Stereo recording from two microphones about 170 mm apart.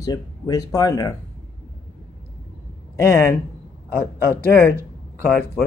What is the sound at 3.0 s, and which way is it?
Speech, 15° left (ahead or behind).